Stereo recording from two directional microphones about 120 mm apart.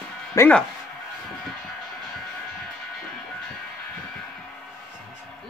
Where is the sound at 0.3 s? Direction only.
25° left (ahead or behind).